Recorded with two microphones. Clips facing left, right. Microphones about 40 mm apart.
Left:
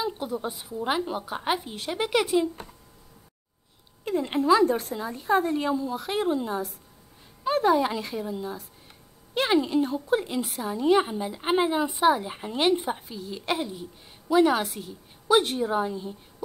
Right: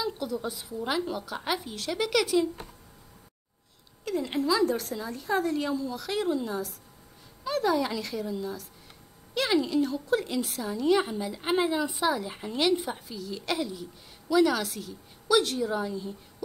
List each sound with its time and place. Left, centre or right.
0.0 s a woman's voice: left
4.0 s a woman's voice: left